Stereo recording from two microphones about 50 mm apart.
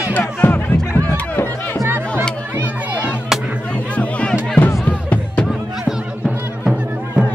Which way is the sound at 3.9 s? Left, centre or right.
Left.